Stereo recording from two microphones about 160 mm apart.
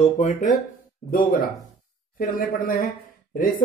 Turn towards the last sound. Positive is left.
turn(degrees=60)  # may be behind; listen again after turning